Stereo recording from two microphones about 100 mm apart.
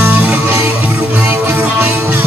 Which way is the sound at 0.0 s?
15° right (ahead or behind).